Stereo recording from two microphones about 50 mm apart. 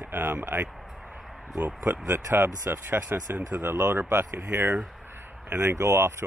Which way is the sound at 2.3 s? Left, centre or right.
Right.